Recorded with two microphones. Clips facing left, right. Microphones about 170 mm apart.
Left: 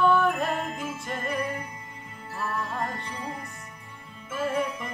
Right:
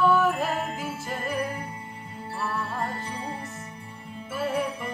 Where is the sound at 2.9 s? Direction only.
30° right (ahead or behind).